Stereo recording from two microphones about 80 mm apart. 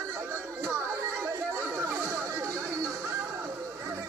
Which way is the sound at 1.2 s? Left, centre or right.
Right.